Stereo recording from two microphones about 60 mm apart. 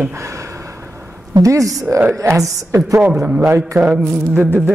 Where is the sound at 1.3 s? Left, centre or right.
Right.